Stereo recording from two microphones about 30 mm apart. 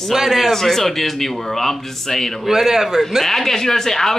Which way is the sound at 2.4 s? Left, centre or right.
Centre.